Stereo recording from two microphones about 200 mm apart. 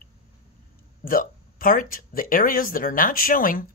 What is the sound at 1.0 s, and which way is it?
Speech, 45° left (ahead or behind).